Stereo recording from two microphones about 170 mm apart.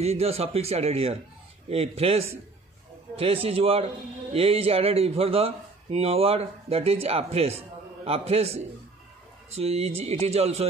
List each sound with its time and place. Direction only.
0.0 s speech: 35° right (ahead or behind)